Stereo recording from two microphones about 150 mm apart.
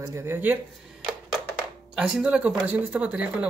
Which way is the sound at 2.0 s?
5° right (ahead or behind).